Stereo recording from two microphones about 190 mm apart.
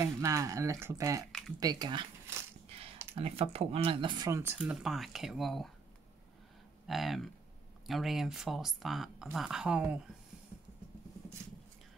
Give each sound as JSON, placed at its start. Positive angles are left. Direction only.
{"t": 0.0, "sound": "speech", "side_deg": -15}
{"t": 3.2, "sound": "speech", "side_deg": -30}
{"t": 4.6, "sound": "speech", "side_deg": 0}
{"t": 6.9, "sound": "speech", "side_deg": 0}